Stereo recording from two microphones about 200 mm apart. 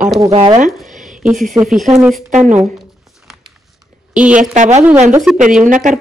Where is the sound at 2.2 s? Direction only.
40° right (ahead or behind).